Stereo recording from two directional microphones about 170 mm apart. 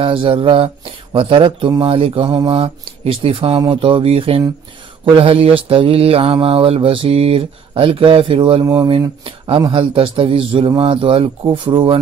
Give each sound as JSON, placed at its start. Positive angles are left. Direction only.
{"t": 0.0, "sound": "speech", "side_deg": -30}
{"t": 1.1, "sound": "mantra", "side_deg": -30}
{"t": 9.6, "sound": "speech", "side_deg": -30}